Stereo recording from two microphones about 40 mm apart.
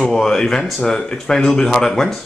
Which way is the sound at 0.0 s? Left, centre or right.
Centre.